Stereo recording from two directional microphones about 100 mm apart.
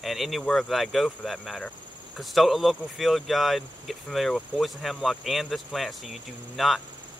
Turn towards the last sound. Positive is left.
turn(degrees=0)  # may be behind; listen again after turning